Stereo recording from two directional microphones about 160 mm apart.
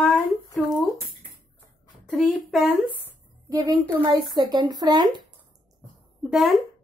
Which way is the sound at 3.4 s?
20° right (ahead or behind).